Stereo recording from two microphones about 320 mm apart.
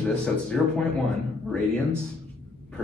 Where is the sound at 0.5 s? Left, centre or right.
Centre.